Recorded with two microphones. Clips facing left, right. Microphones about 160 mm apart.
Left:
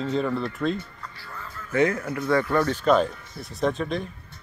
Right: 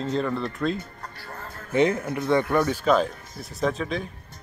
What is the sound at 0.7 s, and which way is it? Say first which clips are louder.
Music: even; 45° right (ahead or behind).